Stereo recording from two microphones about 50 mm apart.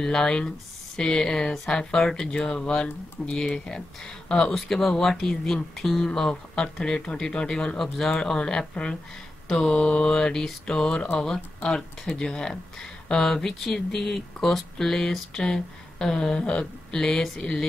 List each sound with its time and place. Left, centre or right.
0.0 s speech: centre
4.6 s speech: centre